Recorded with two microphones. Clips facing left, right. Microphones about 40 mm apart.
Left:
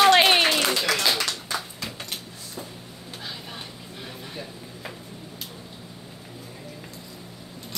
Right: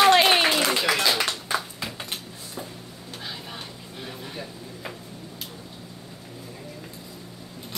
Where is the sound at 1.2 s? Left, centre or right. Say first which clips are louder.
Right 3 dB; centre.